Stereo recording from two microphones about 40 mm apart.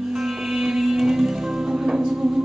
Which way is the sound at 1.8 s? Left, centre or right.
Centre.